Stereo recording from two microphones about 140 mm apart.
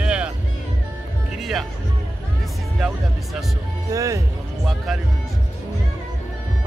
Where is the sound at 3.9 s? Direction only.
25° right (ahead or behind).